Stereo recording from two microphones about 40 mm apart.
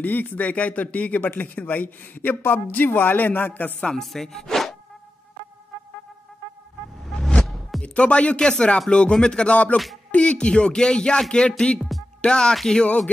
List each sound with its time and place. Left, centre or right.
0.0 s a man's voice: left
4.0 s wood: centre
7.1 s a sound: centre
7.4 s music: centre
7.8 s speech: left
8.4 s a man's voice: left
9.5 s a man's voice: left; by 11.4 s centre
11.4 s a man's voice: left